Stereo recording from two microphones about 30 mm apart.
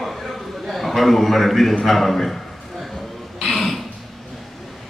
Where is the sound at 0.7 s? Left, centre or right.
Centre.